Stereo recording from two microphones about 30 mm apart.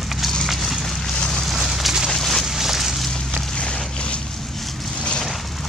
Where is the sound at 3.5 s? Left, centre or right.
Left.